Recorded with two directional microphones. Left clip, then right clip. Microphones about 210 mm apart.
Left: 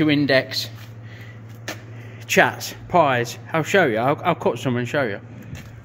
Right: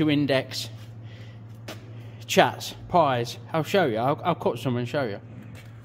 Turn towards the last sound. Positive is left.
turn(degrees=-5)  # may be behind; listen again after turning